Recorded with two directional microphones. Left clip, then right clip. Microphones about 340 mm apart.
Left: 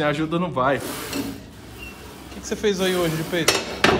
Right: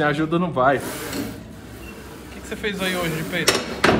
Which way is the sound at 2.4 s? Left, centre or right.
Centre.